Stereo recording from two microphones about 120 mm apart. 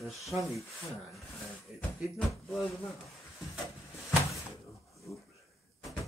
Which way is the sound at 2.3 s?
Centre (ahead or behind).